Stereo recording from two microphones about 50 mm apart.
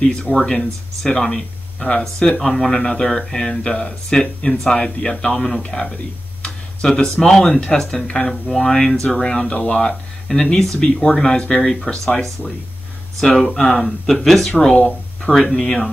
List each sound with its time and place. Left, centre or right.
0.0 s speech: centre
13.2 s speech: centre
14.8 s speech: left
15.5 s speech: centre